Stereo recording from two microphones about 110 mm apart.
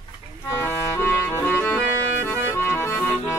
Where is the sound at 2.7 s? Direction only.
20° left (ahead or behind).